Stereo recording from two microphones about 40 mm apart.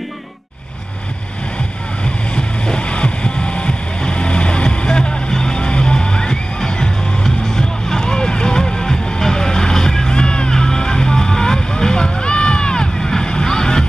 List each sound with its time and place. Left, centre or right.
2.3 s music: left
4.0 s vehicle: left
5.3 s music: centre
10.1 s music: left